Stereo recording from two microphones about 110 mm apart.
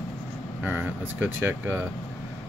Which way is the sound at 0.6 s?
15° right (ahead or behind).